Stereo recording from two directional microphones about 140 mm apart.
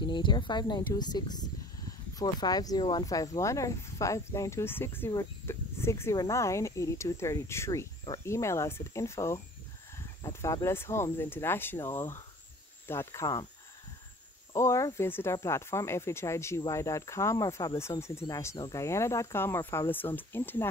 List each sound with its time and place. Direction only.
0.0 s speech: 35° left (ahead or behind)
14.5 s speech: 20° left (ahead or behind)